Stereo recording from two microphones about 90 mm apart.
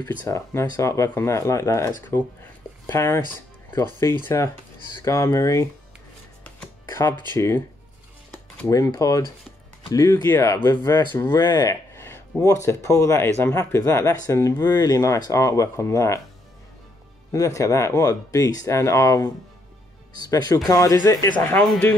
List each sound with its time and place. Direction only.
0.0 s speech: 40° left (ahead or behind)
6.9 s music: 30° left (ahead or behind)
7.3 s speech: 30° left (ahead or behind)
8.6 s speech: 35° left (ahead or behind)
17.3 s speech: 35° left (ahead or behind)
21.5 s speech: 5° left (ahead or behind)